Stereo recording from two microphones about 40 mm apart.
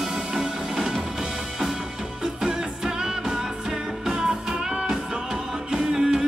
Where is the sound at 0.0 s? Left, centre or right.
Centre.